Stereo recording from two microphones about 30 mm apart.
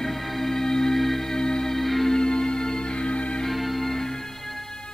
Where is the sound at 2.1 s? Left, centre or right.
Left.